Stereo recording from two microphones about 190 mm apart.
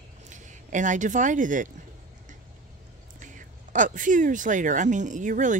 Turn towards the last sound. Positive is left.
turn(degrees=-40)  # may be behind; listen again after turning